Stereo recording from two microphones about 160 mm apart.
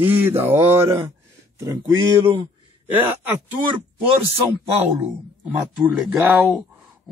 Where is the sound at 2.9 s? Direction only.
10° right (ahead or behind).